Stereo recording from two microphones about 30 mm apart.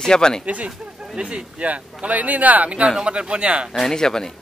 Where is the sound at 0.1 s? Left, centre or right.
Left.